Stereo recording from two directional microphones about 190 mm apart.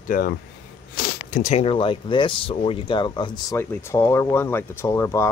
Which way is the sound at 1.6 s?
30° left (ahead or behind).